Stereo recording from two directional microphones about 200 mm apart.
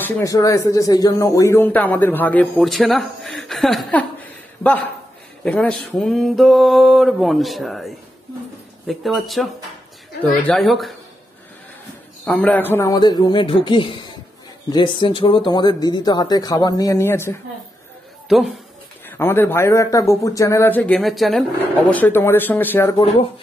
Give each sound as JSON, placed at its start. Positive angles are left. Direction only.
{"t": 0.0, "sound": "speech", "side_deg": 15}
{"t": 5.4, "sound": "mantra", "side_deg": 5}
{"t": 12.3, "sound": "speech", "side_deg": 5}
{"t": 18.3, "sound": "mantra", "side_deg": 0}
{"t": 19.0, "sound": "speech", "side_deg": 10}
{"t": 21.9, "sound": "speech", "side_deg": 10}